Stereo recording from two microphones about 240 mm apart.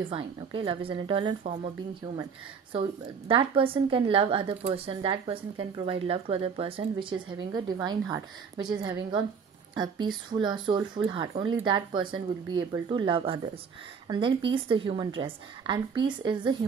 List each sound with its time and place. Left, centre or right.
0.1 s a woman's voice: right
2.7 s a woman's voice: right